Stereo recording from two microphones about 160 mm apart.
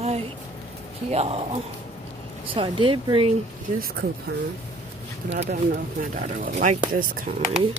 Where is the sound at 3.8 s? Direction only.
90° right.